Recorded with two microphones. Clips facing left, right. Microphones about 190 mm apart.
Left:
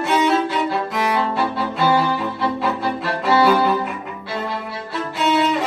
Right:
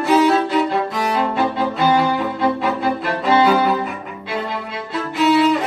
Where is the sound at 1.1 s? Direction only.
15° right (ahead or behind).